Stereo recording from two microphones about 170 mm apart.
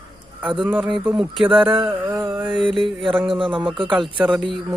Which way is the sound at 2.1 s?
20° right (ahead or behind).